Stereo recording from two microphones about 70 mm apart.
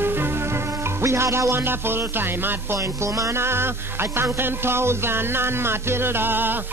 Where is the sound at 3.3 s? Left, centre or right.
Right.